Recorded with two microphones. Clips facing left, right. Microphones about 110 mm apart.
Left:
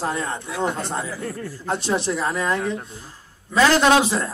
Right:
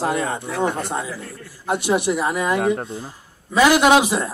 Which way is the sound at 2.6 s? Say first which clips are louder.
Right 6 dB; 60° right (ahead or behind).